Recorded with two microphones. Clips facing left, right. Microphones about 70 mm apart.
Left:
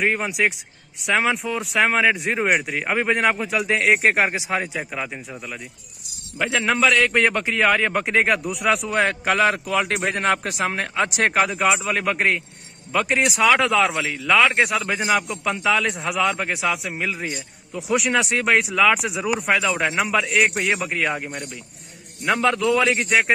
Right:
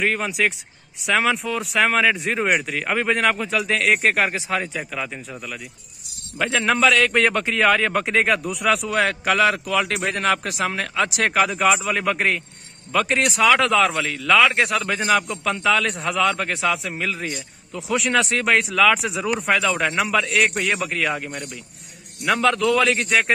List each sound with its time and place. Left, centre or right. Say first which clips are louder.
0.0 s a man's voice: even; centre
0.3 s a man's voice: even; centre
4.0 s speech: left 1 dB; left
4.4 s a man's voice: even; centre
6.3 s a man's voice: right 1 dB; centre
20.9 s speech: even; centre
22.2 s speech: right 1 dB; centre